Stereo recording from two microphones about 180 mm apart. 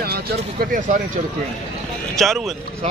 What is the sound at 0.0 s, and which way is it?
Speech, 60° right (ahead or behind).